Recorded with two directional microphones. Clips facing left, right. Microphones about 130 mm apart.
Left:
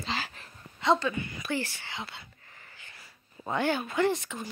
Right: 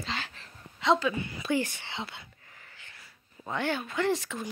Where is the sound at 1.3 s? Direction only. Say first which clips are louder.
Right 4 dB; 20° right (ahead or behind).